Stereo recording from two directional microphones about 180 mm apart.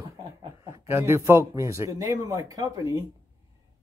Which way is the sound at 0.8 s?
15° right (ahead or behind).